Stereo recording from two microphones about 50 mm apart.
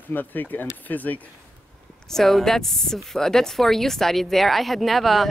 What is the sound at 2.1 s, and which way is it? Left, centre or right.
Speech, centre.